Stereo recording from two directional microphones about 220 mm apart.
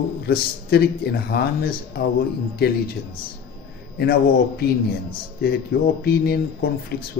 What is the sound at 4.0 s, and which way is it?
Speech, 45° left (ahead or behind).